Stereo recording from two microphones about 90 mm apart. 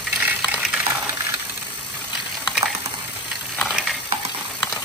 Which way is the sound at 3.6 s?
5° right (ahead or behind).